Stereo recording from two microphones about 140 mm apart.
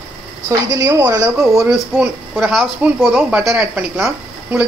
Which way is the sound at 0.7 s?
25° right (ahead or behind).